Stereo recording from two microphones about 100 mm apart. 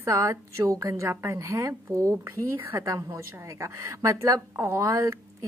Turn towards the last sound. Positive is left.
turn(degrees=-35)  # may be behind; listen again after turning